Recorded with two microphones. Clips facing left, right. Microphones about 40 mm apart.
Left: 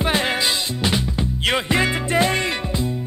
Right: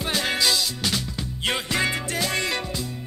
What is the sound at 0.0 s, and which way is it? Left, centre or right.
Music, left.